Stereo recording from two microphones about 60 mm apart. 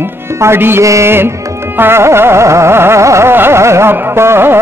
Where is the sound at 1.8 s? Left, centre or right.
Right.